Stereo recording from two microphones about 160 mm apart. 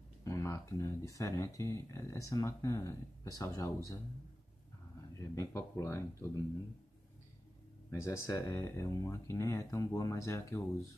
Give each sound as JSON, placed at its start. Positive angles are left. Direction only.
{"t": 0.2, "sound": "speech", "side_deg": 20}
{"t": 5.2, "sound": "speech", "side_deg": 20}
{"t": 7.9, "sound": "speech", "side_deg": 20}